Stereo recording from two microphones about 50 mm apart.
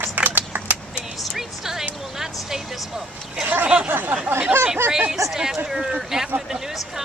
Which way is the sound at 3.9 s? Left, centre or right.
Right.